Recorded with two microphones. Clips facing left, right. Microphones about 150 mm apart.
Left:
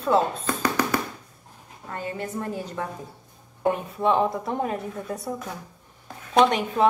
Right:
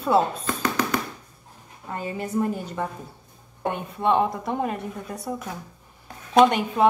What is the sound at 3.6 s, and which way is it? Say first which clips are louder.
A woman's voice: left 3 dB; centre (ahead or behind).